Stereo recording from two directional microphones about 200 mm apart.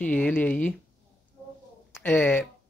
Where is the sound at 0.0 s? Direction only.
10° left (ahead or behind).